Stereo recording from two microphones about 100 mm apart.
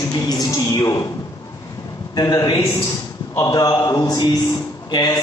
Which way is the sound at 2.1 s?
40° left (ahead or behind).